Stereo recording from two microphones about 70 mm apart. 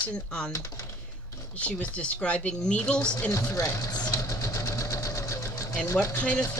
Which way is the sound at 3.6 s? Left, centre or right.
Left.